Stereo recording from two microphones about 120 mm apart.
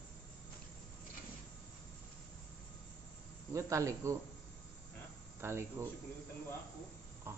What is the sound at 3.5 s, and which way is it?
Speech, 25° right (ahead or behind).